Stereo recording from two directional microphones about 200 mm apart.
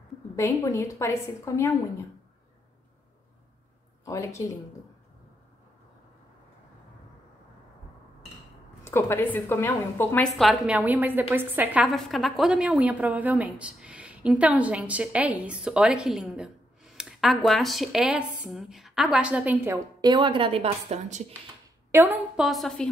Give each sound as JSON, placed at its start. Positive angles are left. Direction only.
{"t": 0.4, "sound": "speech", "side_deg": 15}
{"t": 4.0, "sound": "speech", "side_deg": 15}
{"t": 8.8, "sound": "a woman's voice", "side_deg": 10}
{"t": 20.1, "sound": "a woman's voice", "side_deg": -25}
{"t": 21.9, "sound": "a woman's voice", "side_deg": -10}